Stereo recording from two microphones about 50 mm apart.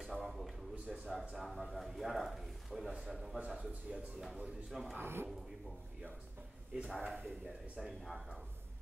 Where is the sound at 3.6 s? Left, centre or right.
Right.